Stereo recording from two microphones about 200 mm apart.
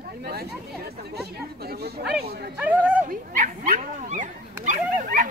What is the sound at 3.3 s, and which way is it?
Speech, 40° right (ahead or behind).